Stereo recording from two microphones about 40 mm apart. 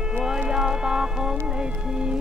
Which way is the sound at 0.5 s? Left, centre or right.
Centre.